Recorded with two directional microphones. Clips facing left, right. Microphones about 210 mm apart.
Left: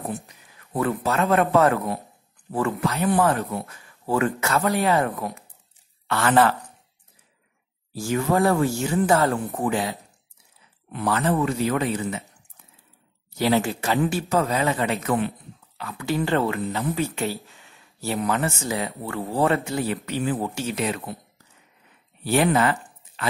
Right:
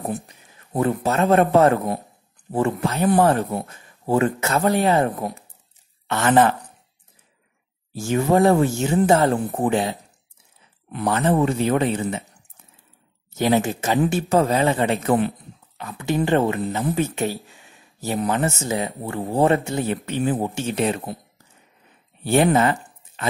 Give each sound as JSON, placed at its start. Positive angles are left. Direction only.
{"t": 0.1, "sound": "a man's voice", "side_deg": -25}
{"t": 6.0, "sound": "speech", "side_deg": -20}
{"t": 7.9, "sound": "speech", "side_deg": -25}
{"t": 11.1, "sound": "speech", "side_deg": -25}
{"t": 13.3, "sound": "speech", "side_deg": -20}
{"t": 15.8, "sound": "speech", "side_deg": -25}
{"t": 17.5, "sound": "a sound", "side_deg": -15}
{"t": 18.3, "sound": "speech", "side_deg": -25}
{"t": 22.2, "sound": "speech", "side_deg": -25}